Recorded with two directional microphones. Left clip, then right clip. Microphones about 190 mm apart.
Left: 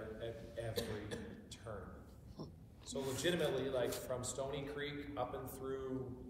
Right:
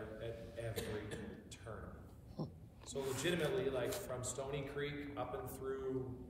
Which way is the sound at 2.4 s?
55° right (ahead or behind).